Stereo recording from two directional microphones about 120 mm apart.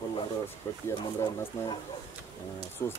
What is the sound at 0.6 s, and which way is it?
Speech, 25° left (ahead or behind).